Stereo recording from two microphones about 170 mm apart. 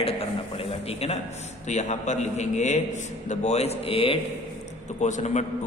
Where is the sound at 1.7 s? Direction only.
45° left (ahead or behind).